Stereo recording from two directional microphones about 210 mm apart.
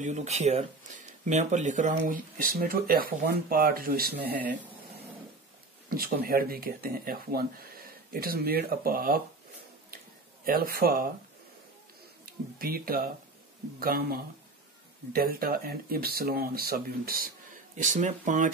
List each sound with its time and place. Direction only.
0.0 s speech: 35° right (ahead or behind)
5.9 s speech: 45° right (ahead or behind)
10.4 s speech: 45° right (ahead or behind)
12.5 s speech: 45° right (ahead or behind)